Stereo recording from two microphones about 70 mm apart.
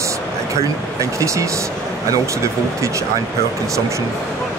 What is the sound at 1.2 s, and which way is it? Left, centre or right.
Speech, right.